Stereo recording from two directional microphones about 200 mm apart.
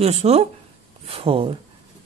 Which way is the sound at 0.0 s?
30° right (ahead or behind).